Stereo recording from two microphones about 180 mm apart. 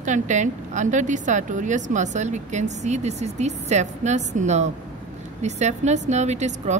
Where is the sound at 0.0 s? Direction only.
40° right (ahead or behind).